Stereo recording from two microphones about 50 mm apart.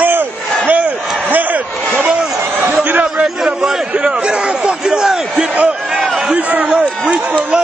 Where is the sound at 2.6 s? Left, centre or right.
Right.